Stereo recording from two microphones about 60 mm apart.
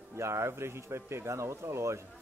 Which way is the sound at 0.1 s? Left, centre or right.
Right.